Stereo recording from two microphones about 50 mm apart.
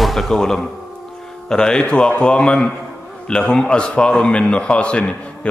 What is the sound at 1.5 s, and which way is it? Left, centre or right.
A man's voice, centre.